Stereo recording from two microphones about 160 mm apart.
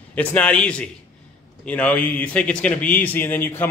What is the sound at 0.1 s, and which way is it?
A man's voice, 10° left (ahead or behind).